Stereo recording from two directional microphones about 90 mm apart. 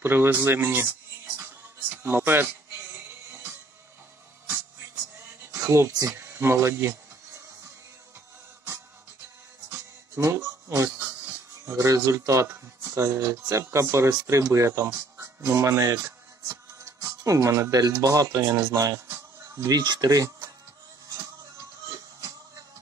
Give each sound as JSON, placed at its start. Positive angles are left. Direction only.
{"t": 0.0, "sound": "speech", "side_deg": -25}
{"t": 2.0, "sound": "speech", "side_deg": -25}
{"t": 5.5, "sound": "speech", "side_deg": -30}
{"t": 9.7, "sound": "music", "side_deg": -30}
{"t": 11.7, "sound": "speech", "side_deg": -40}
{"t": 19.8, "sound": "speech", "side_deg": -50}